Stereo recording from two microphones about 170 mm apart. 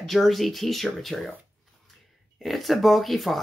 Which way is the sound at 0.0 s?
Centre (ahead or behind).